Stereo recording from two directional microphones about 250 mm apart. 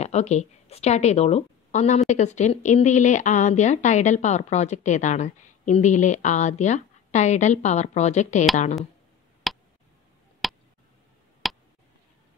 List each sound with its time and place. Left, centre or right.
0.0 s a woman's voice: left
9.5 s tick: centre
10.4 s a sound: centre